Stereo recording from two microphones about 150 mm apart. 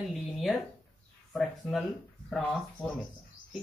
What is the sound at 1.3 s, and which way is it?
Speech, centre (ahead or behind).